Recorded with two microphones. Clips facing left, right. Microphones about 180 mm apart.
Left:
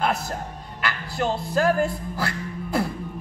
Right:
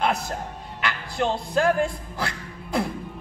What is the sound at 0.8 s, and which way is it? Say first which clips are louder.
Speech: even; 5° left (ahead or behind).